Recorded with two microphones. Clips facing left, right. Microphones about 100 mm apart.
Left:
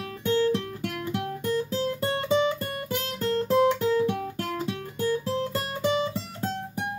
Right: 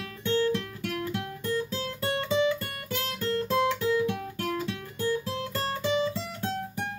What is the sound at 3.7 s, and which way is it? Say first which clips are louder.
Music: left 3 dB; 35° left (ahead or behind).